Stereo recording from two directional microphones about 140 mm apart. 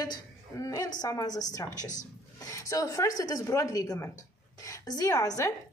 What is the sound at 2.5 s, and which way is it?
A woman's voice, 25° left (ahead or behind).